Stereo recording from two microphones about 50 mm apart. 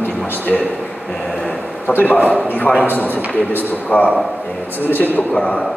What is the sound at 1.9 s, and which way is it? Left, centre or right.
A man's voice, left.